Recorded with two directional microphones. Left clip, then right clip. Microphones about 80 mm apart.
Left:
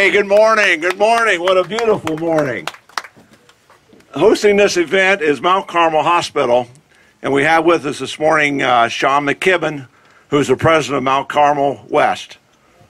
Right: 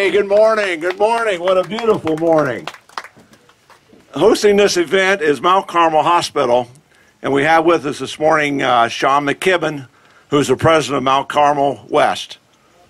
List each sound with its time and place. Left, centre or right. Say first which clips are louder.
0.0 s speech: left 1 dB; left
4.1 s a man's voice: even; centre